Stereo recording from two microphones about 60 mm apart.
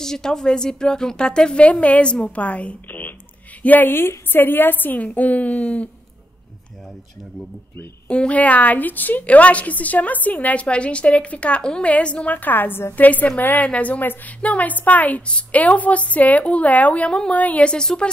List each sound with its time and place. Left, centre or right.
0.0 s a woman's voice: centre; by 3.9 s left
3.9 s a woman's voice: left
8.1 s a woman's voice: left
17.6 s a woman's voice: centre